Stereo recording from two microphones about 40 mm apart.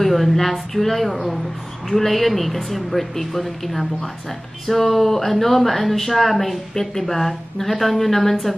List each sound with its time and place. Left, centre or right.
0.0 s speech: centre